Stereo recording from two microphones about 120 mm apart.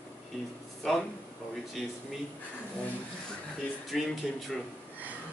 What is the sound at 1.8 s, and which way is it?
Speech, 5° right (ahead or behind).